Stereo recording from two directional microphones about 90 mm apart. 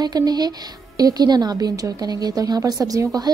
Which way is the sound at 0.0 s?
50° right (ahead or behind).